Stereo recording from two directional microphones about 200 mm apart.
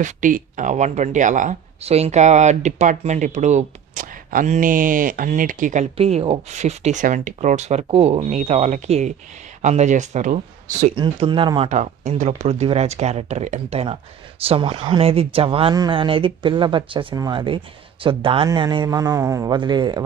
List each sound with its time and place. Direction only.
0.0 s speech: 40° right (ahead or behind)
11.0 s speech: 25° right (ahead or behind)
11.7 s speech: 35° right (ahead or behind)